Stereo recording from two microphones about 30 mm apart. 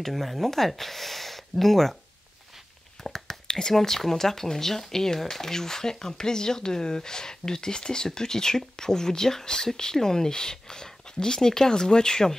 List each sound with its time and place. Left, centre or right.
0.0 s speech: centre
3.0 s whispering: centre
3.4 s a sound: left
3.7 s speech: centre